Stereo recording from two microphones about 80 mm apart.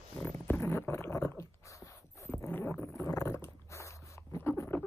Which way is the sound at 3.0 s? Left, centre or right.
Left.